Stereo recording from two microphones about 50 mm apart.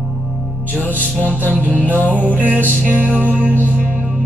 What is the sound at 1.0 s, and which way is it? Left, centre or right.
Music, left.